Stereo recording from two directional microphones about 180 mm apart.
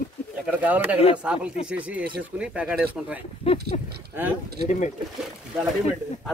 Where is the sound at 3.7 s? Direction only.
40° left (ahead or behind).